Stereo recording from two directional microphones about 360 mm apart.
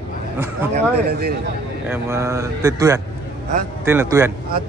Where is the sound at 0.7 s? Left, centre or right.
Right.